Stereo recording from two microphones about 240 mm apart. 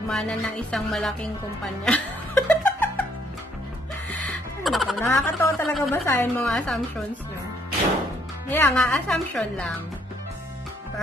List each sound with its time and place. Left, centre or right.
0.1 s speech: centre
1.9 s laughter: centre
4.6 s speech: centre
8.5 s speech: centre